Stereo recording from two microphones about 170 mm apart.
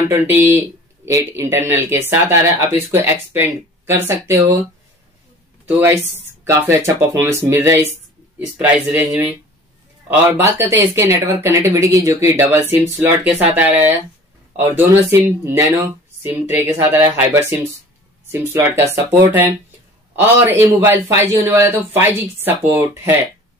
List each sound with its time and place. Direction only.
0.1 s speech: 10° right (ahead or behind)
5.7 s speech: 10° right (ahead or behind)